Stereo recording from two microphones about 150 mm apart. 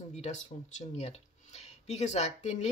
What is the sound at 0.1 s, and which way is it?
Speech, 50° left (ahead or behind).